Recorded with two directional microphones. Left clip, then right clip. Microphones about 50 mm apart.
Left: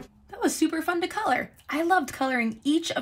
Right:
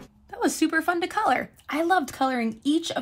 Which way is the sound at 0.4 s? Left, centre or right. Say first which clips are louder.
Right 1 dB; right.